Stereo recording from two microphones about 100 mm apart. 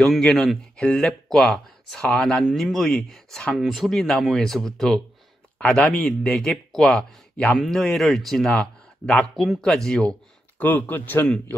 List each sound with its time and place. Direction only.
0.0 s speech: 5° left (ahead or behind)
10.6 s speech: 20° left (ahead or behind)